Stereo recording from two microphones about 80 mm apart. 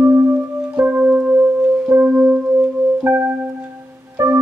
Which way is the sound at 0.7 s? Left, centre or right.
Centre.